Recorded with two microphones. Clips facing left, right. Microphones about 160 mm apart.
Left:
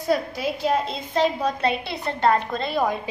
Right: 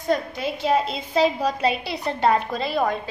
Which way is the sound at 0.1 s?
5° left (ahead or behind).